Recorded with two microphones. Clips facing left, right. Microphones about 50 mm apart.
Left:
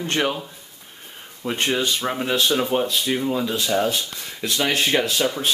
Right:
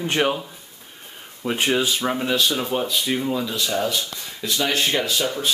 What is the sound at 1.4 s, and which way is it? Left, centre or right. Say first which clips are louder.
Speech: right 1 dB; centre.